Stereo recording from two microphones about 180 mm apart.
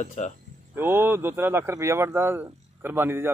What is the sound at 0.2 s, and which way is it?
Speech, 45° left (ahead or behind).